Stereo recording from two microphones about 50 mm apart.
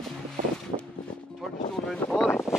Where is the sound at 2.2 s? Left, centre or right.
Left.